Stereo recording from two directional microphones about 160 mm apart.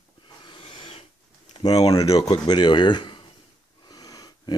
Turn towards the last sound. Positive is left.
turn(degrees=25)  # may be behind; listen again after turning